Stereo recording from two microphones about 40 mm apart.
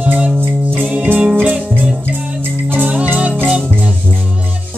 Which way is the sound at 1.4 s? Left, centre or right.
Right.